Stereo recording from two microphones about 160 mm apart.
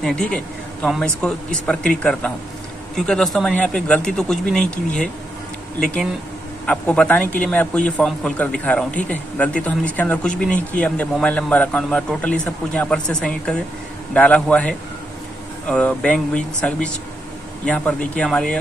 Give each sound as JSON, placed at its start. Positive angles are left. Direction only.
{"t": 0.0, "sound": "a man's voice", "side_deg": 5}